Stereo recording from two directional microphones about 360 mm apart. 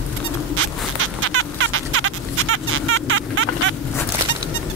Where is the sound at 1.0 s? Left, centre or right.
Right.